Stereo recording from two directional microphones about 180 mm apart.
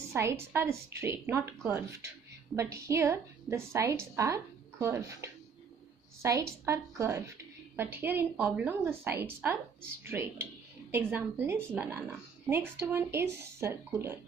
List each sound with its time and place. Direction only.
0.1 s a woman's voice: 15° right (ahead or behind)